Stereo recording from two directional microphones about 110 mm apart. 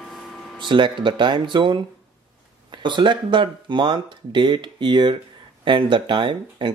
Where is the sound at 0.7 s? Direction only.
45° right (ahead or behind).